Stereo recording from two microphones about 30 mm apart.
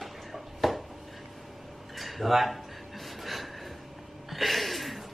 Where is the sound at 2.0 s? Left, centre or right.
Centre.